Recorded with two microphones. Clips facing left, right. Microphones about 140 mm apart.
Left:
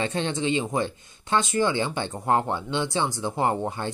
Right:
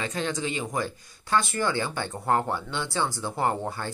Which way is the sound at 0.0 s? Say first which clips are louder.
Left 3 dB; 25° left (ahead or behind).